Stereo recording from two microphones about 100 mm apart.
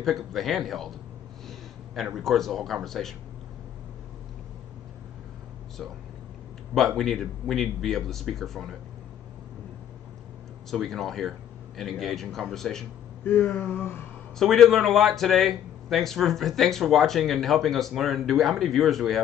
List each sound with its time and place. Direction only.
0.0 s speech: centre (ahead or behind)
2.1 s speech: centre (ahead or behind)
7.0 s speech: centre (ahead or behind)
10.7 s speech: 5° left (ahead or behind)
13.2 s a sound: 20° left (ahead or behind)
14.4 s speech: centre (ahead or behind)